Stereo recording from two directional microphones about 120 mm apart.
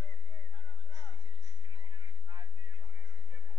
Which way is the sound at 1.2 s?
45° right (ahead or behind).